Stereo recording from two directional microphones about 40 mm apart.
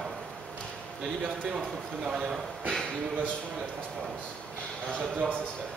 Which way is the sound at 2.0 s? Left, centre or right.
Centre.